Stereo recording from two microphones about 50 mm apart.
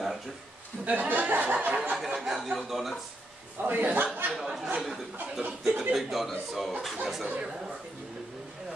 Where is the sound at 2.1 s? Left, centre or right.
Centre.